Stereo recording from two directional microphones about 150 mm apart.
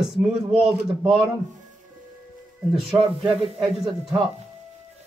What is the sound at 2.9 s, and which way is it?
Speech, 20° right (ahead or behind).